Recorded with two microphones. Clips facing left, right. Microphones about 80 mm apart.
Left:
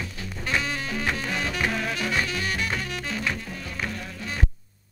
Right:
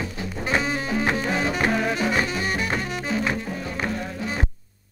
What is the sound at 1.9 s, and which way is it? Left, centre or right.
Music, right.